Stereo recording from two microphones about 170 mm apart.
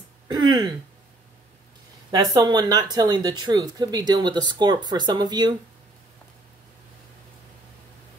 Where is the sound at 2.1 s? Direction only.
20° right (ahead or behind).